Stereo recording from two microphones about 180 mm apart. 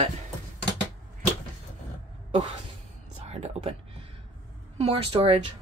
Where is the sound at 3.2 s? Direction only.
35° right (ahead or behind).